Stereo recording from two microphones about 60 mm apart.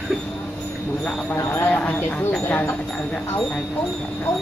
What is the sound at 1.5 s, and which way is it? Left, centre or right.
Speech, left.